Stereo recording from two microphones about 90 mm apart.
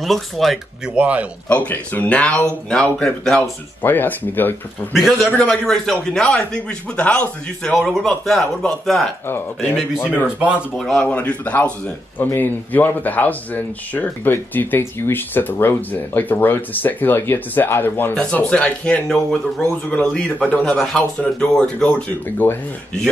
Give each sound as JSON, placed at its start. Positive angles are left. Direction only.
{"t": 0.0, "sound": "speech", "side_deg": 0}
{"t": 0.8, "sound": "speech", "side_deg": -15}
{"t": 1.7, "sound": "speech", "side_deg": 20}
{"t": 3.8, "sound": "speech", "side_deg": 20}
{"t": 4.9, "sound": "speech", "side_deg": 0}
{"t": 5.3, "sound": "speech", "side_deg": 10}
{"t": 10.2, "sound": "speech", "side_deg": -15}
{"t": 11.0, "sound": "speech", "side_deg": 15}
{"t": 18.1, "sound": "speech", "side_deg": 10}
{"t": 20.6, "sound": "speech", "side_deg": 5}